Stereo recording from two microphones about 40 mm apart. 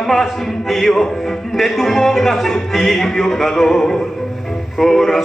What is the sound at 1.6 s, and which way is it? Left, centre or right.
Music, centre.